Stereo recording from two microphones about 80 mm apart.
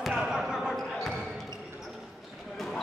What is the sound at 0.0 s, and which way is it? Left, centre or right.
Basketball bounce, centre.